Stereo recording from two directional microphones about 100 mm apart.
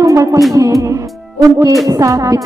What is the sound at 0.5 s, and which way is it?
Music, 35° right (ahead or behind).